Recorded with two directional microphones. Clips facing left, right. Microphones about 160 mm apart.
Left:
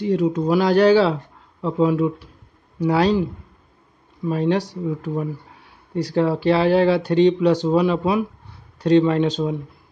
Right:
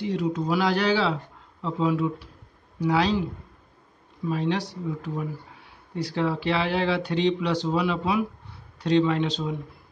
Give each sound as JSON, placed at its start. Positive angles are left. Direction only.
{"t": 0.0, "sound": "speech", "side_deg": 50}
{"t": 4.3, "sound": "speech", "side_deg": 45}